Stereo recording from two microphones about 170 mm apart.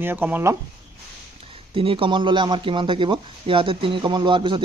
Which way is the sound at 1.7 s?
30° right (ahead or behind).